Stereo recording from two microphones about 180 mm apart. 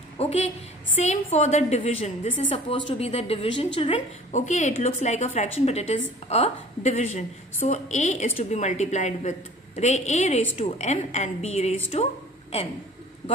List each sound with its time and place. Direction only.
0.2 s a woman's voice: 35° left (ahead or behind)
4.3 s a woman's voice: 40° left (ahead or behind)